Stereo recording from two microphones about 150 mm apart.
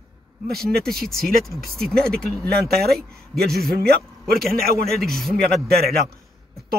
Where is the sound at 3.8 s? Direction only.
90° right.